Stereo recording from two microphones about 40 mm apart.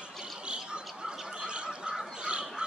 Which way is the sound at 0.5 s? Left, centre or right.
Right.